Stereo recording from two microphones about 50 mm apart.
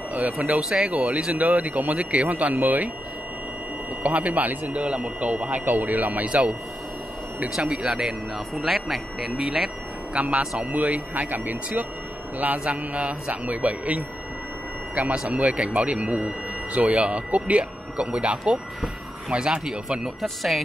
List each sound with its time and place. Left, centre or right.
0.1 s speech: right
0.6 s speech: centre; by 2.9 s right
4.0 s speech: right
7.6 s speech: centre
8.5 s speech: centre
10.1 s speech: right
12.6 s speech: right
20.2 s speech: centre